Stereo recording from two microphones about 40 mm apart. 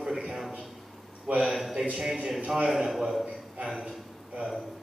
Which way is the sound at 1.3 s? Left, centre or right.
Right.